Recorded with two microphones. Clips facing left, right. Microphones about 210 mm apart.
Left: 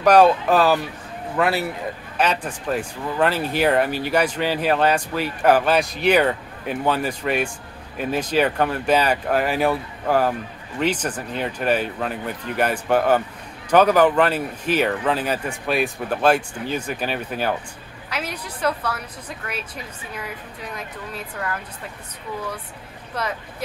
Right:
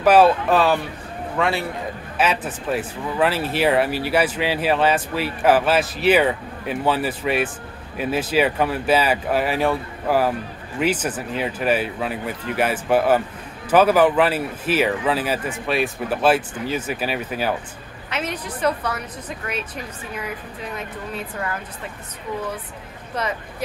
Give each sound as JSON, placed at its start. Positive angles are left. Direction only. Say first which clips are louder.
{"t": 0.0, "sound": "speech", "louder": "even", "side_deg": -5}
{"t": 20.7, "sound": "speech", "louder": "right 3 dB", "side_deg": -5}